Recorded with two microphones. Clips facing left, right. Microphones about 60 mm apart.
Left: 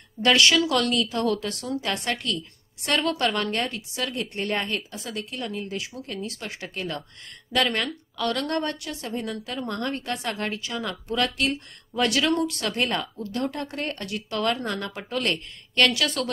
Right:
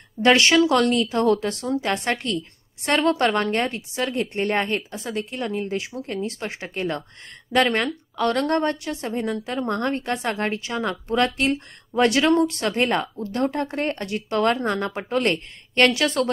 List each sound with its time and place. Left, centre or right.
0.2 s a woman's voice: right